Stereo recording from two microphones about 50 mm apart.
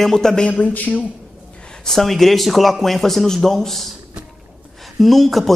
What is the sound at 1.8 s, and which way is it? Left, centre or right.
Speech, centre.